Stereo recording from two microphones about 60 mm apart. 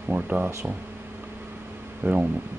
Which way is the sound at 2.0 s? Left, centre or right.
Right.